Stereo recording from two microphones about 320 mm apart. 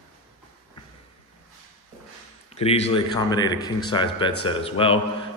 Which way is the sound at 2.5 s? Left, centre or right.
Centre.